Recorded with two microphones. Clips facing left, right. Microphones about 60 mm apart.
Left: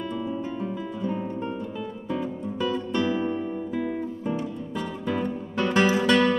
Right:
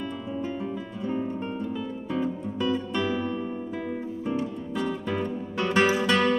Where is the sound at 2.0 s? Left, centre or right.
Centre.